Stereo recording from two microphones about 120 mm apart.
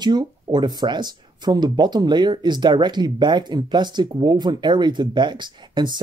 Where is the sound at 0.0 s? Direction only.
35° right (ahead or behind).